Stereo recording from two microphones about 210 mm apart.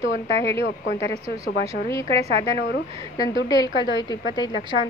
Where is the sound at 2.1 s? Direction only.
30° right (ahead or behind).